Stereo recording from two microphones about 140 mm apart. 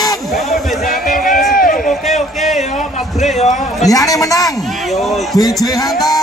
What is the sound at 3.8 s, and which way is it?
A man's voice, 25° left (ahead or behind).